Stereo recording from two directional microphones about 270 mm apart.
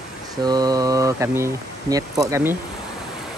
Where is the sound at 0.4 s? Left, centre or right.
Centre.